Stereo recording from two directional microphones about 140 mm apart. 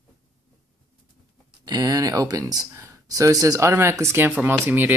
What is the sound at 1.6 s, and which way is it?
Speech, 30° right (ahead or behind).